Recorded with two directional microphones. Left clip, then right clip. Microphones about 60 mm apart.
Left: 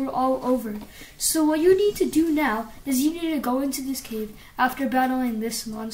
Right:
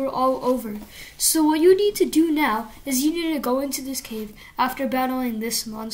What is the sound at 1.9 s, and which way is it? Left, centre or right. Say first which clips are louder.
Speech: right 2 dB; centre.